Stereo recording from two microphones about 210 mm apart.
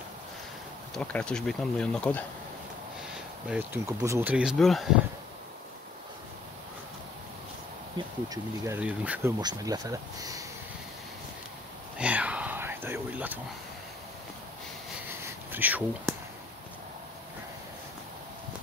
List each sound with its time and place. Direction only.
0.9 s speech: 5° left (ahead or behind)
3.4 s speech: 10° right (ahead or behind)
8.3 s speech: 10° right (ahead or behind)
9.4 s speech: 20° right (ahead or behind)
12.0 s a sound: 5° right (ahead or behind)
15.5 s speech: 10° right (ahead or behind)